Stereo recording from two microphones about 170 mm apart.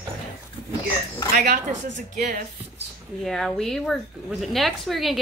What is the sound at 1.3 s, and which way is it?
A woman's voice, 60° right (ahead or behind).